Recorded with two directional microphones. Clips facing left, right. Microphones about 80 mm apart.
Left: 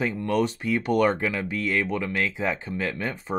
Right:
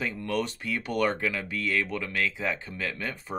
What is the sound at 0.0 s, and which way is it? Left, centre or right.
Speech, left.